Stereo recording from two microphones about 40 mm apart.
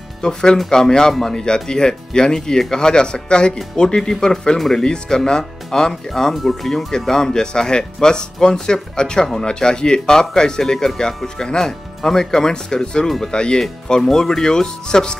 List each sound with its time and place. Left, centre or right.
0.2 s speech: centre
14.0 s speech: centre